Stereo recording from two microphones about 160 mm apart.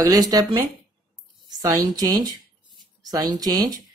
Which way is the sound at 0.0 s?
20° right (ahead or behind).